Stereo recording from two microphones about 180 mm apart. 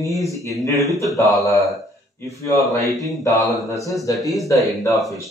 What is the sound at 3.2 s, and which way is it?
Speech, 20° left (ahead or behind).